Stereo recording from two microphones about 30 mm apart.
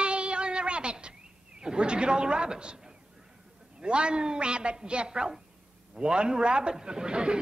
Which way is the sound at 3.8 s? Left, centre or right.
Right.